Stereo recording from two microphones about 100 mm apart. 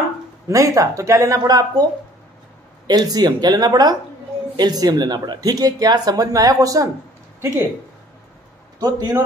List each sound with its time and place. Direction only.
0.5 s speech: 35° right (ahead or behind)
2.9 s speech: 40° right (ahead or behind)
8.7 s speech: 40° right (ahead or behind)